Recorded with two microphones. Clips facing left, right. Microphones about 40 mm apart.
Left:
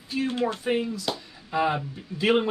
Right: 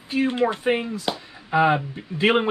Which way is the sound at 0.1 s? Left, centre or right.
Right.